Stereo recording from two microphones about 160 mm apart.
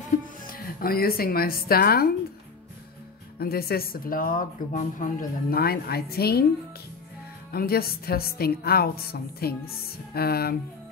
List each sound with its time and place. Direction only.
0.5 s speech: 65° left (ahead or behind)
3.3 s a woman's voice: 75° left (ahead or behind)
7.5 s a woman's voice: 75° left (ahead or behind)